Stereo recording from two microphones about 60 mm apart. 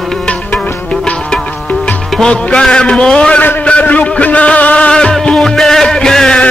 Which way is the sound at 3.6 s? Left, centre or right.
Left.